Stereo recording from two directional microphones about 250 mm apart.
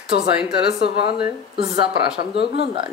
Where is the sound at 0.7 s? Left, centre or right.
Left.